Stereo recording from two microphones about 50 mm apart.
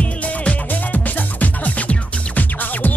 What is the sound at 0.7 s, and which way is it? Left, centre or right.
Music, left.